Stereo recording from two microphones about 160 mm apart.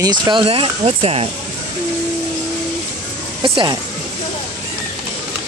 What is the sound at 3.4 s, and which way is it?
Speech, 30° right (ahead or behind).